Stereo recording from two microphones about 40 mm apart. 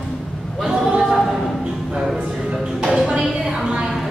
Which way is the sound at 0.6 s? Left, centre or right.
Centre.